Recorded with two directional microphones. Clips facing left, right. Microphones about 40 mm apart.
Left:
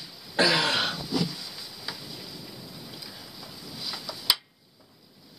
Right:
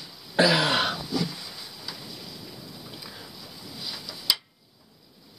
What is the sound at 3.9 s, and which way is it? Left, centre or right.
Tick-tock, centre.